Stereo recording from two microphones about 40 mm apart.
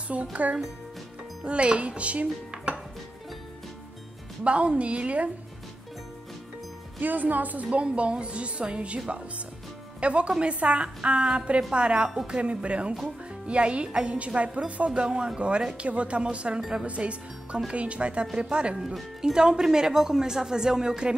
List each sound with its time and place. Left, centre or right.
0.1 s a woman's voice: right
4.5 s a woman's voice: right
7.0 s a woman's voice: right
7.8 s a woman's voice: right